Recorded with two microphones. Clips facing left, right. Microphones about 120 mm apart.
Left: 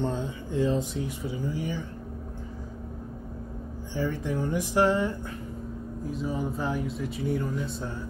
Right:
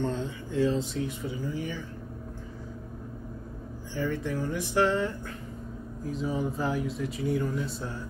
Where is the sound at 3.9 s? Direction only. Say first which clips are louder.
Left 1 dB; 15° left (ahead or behind).